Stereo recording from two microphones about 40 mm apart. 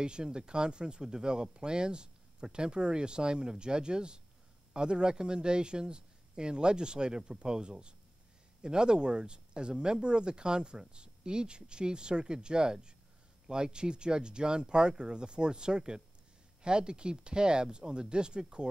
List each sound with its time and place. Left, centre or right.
0.0 s speech: right